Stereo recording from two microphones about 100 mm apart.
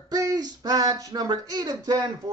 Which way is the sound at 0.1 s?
35° right (ahead or behind).